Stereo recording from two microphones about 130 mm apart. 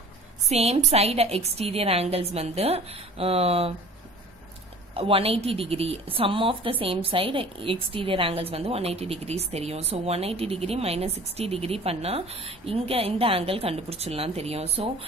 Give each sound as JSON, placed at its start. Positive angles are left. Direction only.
{"t": 0.5, "sound": "a woman's voice", "side_deg": -55}
{"t": 4.9, "sound": "a woman's voice", "side_deg": -45}